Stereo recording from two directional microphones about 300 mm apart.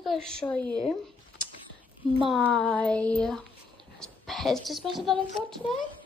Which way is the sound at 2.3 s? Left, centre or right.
Centre.